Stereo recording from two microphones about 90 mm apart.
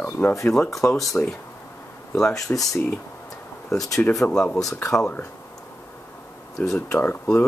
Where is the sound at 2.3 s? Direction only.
40° left (ahead or behind).